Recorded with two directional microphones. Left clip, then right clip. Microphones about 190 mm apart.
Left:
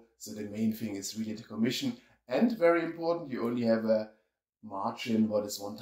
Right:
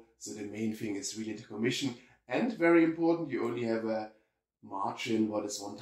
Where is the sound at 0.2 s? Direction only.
45° left (ahead or behind).